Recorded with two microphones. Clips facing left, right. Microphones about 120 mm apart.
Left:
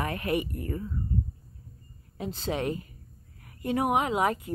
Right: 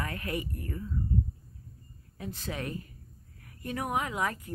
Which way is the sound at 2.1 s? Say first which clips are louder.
Left 6 dB; 25° left (ahead or behind).